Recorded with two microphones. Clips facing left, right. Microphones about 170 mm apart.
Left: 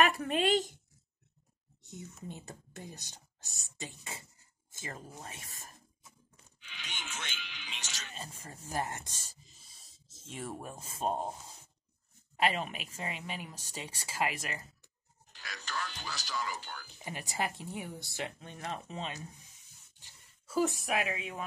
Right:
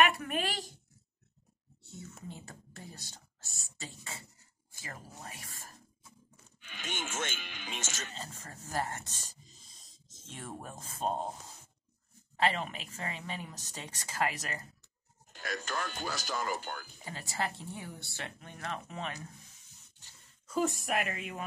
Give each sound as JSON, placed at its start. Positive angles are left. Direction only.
{"t": 0.0, "sound": "speech", "side_deg": 30}
{"t": 1.9, "sound": "speech", "side_deg": 15}
{"t": 6.6, "sound": "speech", "side_deg": -50}
{"t": 8.1, "sound": "speech", "side_deg": 10}
{"t": 12.4, "sound": "speech", "side_deg": 15}
{"t": 15.3, "sound": "speech", "side_deg": -50}
{"t": 17.0, "sound": "speech", "side_deg": 20}